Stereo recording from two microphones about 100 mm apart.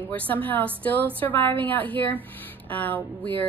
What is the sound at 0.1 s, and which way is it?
Speech, 15° left (ahead or behind).